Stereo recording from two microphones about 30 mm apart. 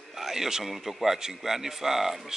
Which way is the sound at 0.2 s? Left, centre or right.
Centre.